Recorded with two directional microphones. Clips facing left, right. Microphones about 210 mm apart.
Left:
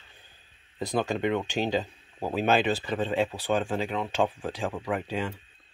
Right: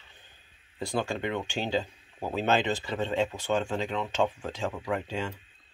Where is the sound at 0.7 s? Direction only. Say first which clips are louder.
Left 3 dB; 20° left (ahead or behind).